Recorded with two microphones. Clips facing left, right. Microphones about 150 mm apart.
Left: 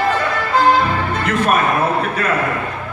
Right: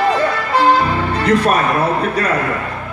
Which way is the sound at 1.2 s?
35° right (ahead or behind).